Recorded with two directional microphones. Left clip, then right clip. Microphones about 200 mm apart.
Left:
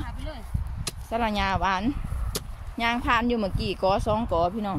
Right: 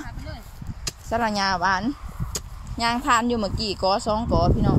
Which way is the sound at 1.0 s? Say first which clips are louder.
Right 3 dB; 15° right (ahead or behind).